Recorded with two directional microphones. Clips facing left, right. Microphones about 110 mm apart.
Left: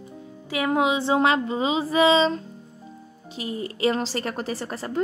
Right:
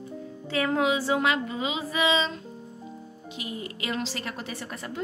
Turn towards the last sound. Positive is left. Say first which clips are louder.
# left 6 dB
turn(degrees=35)  # may be behind; listen again after turning